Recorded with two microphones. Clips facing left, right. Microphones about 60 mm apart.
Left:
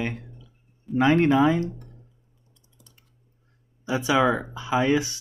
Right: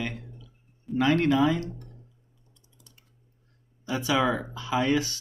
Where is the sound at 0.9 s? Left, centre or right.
Left.